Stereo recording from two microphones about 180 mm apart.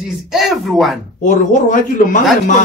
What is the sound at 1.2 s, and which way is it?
Speech, 45° left (ahead or behind).